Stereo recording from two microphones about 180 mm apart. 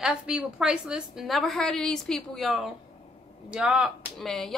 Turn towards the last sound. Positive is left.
turn(degrees=0)  # may be behind; listen again after turning